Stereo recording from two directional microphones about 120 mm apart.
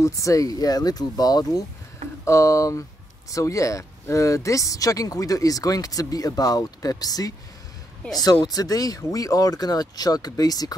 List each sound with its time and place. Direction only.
0.0 s speech: 25° left (ahead or behind)